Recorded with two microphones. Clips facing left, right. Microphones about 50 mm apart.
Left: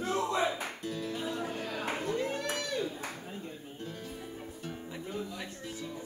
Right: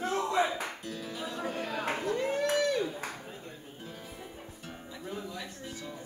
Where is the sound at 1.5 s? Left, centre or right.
Right.